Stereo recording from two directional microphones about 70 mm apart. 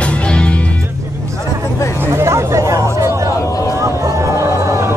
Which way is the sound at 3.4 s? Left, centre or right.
Left.